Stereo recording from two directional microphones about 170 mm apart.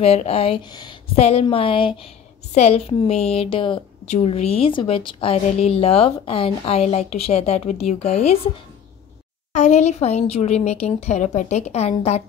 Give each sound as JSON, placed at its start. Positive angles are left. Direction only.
{"t": 0.0, "sound": "a woman's voice", "side_deg": 35}
{"t": 1.1, "sound": "a woman's voice", "side_deg": 35}
{"t": 9.5, "sound": "a woman's voice", "side_deg": 45}